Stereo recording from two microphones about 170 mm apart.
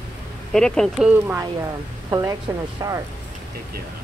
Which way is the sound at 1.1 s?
10° right (ahead or behind).